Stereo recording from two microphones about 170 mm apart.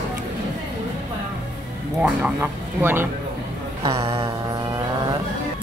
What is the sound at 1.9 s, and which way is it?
A woman's voice, 10° right (ahead or behind).